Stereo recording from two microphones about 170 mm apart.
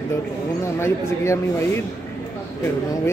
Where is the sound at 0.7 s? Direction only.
15° left (ahead or behind).